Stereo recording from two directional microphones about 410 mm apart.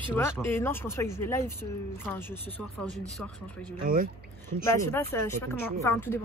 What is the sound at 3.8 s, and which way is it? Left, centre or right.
Speech, right.